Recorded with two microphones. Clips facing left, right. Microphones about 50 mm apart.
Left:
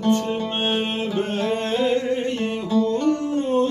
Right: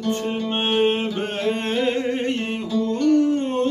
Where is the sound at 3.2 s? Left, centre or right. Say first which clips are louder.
Even; right.